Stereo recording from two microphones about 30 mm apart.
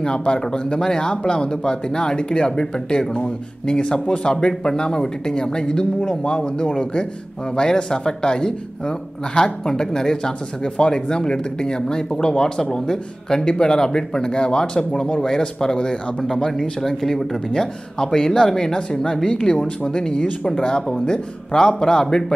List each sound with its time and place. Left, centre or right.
0.4 s speech: left
4.0 s speech: left
4.3 s speech: left; by 17.4 s centre
17.5 s speech: left
18.7 s speech: left